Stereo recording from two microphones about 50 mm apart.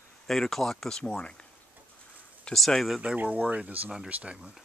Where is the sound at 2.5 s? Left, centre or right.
Centre.